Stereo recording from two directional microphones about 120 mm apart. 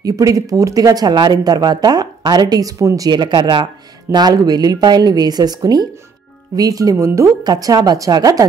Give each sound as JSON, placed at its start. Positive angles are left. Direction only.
{"t": 0.0, "sound": "speech", "side_deg": -30}